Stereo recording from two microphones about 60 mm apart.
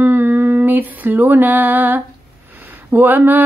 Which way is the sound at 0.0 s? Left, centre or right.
Right.